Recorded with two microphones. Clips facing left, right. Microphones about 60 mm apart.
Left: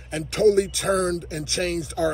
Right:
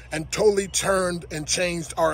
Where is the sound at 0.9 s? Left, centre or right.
Right.